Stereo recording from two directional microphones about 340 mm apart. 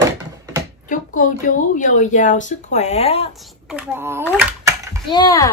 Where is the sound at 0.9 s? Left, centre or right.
Left.